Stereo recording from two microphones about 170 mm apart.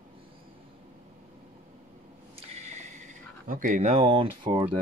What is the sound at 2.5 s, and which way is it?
Speech, 45° right (ahead or behind).